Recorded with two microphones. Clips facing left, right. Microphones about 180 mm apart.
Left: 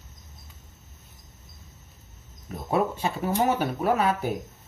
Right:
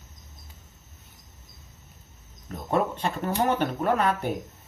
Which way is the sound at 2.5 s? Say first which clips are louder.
Even; 5° left (ahead or behind).